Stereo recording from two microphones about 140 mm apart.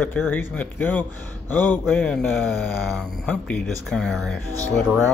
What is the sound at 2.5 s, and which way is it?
Speech, centre (ahead or behind).